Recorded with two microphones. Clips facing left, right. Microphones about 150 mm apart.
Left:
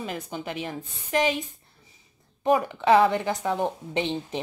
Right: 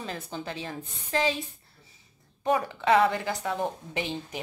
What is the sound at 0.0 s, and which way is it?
A woman's voice, 15° left (ahead or behind).